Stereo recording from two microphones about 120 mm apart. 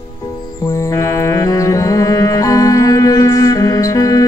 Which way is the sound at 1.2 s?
25° left (ahead or behind).